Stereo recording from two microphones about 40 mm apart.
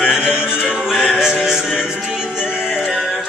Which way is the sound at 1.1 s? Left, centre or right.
Centre.